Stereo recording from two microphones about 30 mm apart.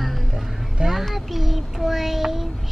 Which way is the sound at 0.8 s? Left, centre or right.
Right.